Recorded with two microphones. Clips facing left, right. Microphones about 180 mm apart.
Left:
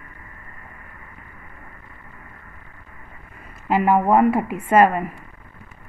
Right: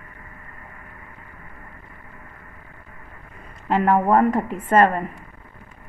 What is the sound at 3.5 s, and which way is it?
A woman's voice, 5° left (ahead or behind).